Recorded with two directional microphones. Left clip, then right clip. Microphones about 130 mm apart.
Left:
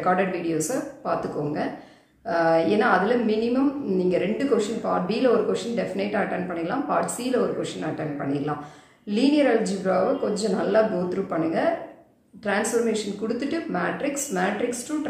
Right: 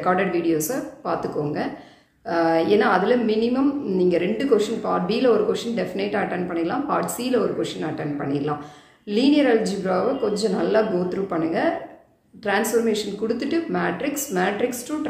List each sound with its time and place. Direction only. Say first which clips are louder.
0.0 s a woman's voice: right 2 dB; 20° right (ahead or behind)